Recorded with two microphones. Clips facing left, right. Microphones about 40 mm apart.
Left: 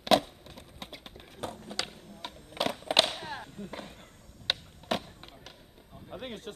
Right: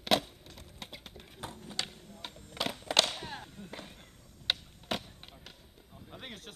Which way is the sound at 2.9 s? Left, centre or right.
Centre.